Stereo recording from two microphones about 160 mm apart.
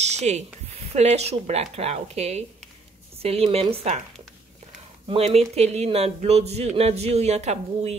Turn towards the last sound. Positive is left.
turn(degrees=-40)  # may be behind; listen again after turning